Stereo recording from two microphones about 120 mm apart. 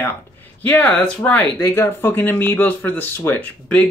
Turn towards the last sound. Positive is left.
turn(degrees=15)  # may be behind; listen again after turning